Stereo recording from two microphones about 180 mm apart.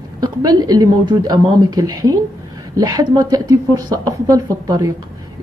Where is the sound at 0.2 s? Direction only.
20° right (ahead or behind).